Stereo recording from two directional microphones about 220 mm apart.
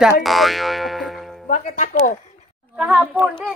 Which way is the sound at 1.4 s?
35° left (ahead or behind).